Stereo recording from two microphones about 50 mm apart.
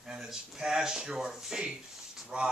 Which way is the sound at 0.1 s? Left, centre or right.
Centre.